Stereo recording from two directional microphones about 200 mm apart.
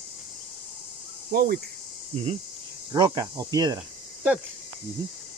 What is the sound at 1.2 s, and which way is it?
Cricket, 50° right (ahead or behind).